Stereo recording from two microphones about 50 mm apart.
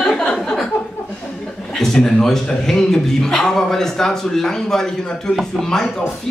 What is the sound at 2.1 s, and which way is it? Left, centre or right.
A man's voice, centre.